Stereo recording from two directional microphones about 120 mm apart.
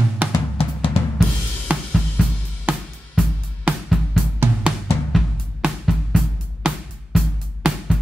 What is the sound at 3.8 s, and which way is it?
Music, centre (ahead or behind).